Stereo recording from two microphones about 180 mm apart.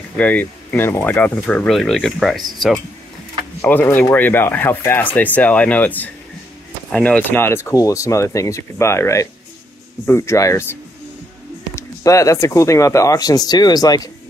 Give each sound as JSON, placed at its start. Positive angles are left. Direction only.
{"t": 0.2, "sound": "speech", "side_deg": 10}
{"t": 3.6, "sound": "speech", "side_deg": 10}
{"t": 11.7, "sound": "speech", "side_deg": 20}